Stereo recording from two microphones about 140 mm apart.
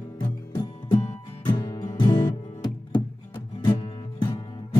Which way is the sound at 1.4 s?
40° left (ahead or behind).